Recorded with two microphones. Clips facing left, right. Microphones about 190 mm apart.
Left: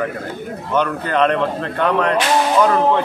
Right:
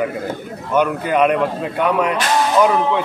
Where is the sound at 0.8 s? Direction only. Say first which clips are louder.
Right 2 dB; 10° right (ahead or behind).